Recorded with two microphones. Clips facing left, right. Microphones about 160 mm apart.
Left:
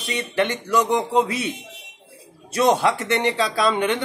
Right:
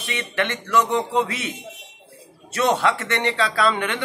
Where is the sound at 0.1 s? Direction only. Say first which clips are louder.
Left 3 dB; 35° left (ahead or behind).